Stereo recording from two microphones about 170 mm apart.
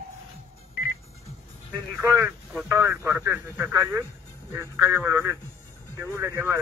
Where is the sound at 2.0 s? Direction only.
15° right (ahead or behind).